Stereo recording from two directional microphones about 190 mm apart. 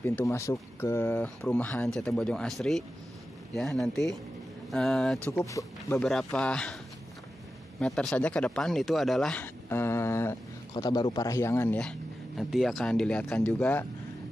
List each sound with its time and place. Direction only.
0.0 s speech: 15° left (ahead or behind)
5.3 s speech: 15° left (ahead or behind)
5.9 s speech: 5° left (ahead or behind)
7.8 s speech: 5° left (ahead or behind)